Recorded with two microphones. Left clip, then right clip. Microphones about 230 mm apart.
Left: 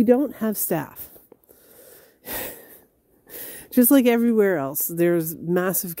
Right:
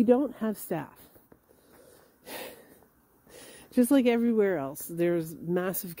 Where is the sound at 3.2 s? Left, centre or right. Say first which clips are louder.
Left 8 dB; left.